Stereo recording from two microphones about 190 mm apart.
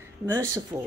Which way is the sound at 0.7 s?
15° right (ahead or behind).